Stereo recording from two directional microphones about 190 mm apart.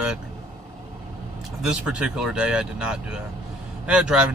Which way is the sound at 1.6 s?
5° right (ahead or behind).